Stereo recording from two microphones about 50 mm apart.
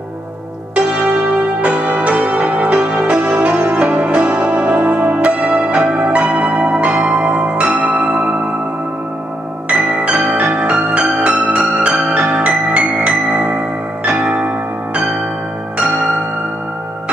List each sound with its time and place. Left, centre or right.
0.7 s music: right
9.7 s music: right